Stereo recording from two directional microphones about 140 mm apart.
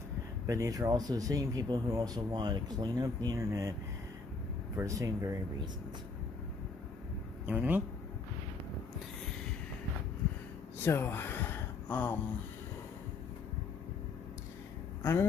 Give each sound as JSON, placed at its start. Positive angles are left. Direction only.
{"t": 0.5, "sound": "speech", "side_deg": -25}
{"t": 4.7, "sound": "speech", "side_deg": -25}
{"t": 7.4, "sound": "speech", "side_deg": -10}
{"t": 10.8, "sound": "a sound", "side_deg": 15}